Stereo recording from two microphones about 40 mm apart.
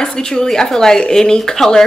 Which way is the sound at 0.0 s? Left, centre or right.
Centre.